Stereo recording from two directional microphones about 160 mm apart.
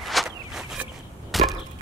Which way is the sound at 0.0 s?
Centre (ahead or behind).